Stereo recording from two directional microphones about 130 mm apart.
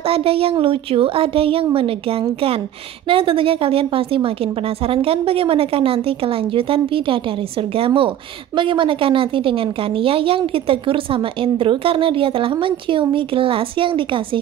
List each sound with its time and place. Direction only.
0.0 s a woman's voice: 45° right (ahead or behind)